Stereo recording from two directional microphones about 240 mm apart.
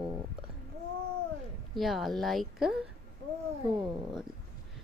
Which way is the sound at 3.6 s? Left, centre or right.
Centre.